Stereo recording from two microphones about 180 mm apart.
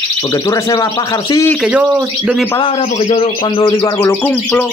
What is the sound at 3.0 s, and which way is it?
Speech, 35° left (ahead or behind).